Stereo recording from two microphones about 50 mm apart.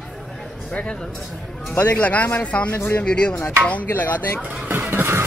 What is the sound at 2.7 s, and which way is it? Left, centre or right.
Speech, left.